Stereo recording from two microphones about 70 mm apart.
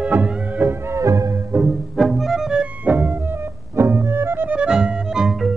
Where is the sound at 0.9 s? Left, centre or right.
Right.